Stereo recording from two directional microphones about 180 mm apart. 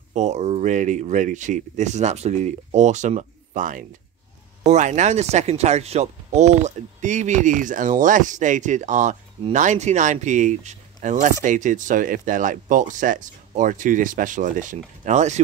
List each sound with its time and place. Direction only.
0.1 s speech: 40° right (ahead or behind)